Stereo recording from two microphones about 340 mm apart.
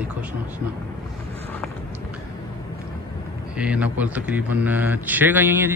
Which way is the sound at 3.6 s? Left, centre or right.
Centre.